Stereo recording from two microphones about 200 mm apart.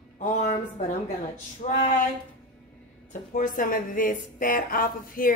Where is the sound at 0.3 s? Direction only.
40° left (ahead or behind).